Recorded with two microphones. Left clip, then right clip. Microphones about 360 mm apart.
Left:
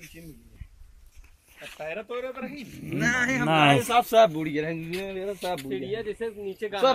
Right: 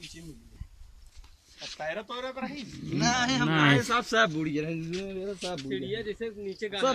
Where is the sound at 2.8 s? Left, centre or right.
Centre.